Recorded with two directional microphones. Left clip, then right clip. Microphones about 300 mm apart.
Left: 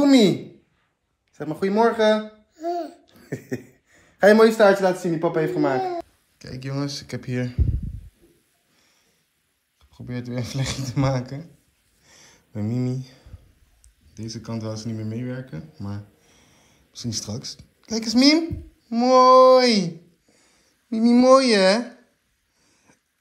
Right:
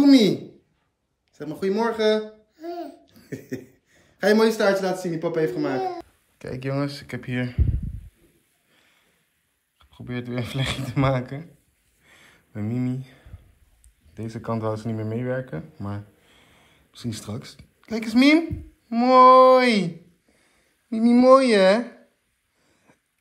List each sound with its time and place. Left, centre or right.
0.0 s a woman's voice: centre
2.5 s a sound: centre
3.1 s a sound: centre
5.0 s speech: centre
5.8 s speech: centre
6.3 s speech: centre
9.8 s speech: centre
12.1 s a sound: centre
14.1 s speech: centre